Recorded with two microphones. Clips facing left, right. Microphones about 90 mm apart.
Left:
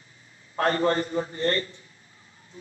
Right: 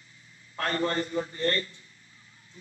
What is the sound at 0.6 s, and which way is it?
A man's voice, 30° left (ahead or behind).